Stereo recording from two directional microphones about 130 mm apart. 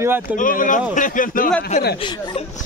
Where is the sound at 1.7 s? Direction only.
60° left (ahead or behind).